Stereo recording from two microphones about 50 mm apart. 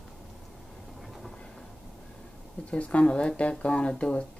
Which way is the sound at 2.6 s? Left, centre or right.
Left.